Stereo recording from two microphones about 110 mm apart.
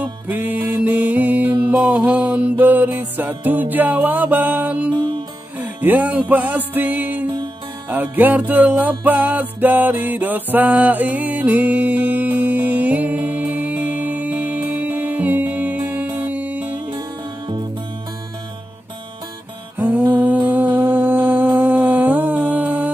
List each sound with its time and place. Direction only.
0.0 s music: 15° right (ahead or behind)
19.8 s mantra: 15° right (ahead or behind)